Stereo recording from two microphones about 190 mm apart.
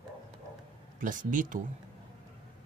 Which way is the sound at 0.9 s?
45° right (ahead or behind).